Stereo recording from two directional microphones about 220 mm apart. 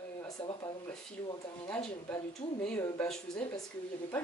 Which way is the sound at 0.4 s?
20° left (ahead or behind).